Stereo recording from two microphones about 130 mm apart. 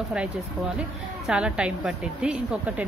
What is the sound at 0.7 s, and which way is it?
A woman's voice, 5° right (ahead or behind).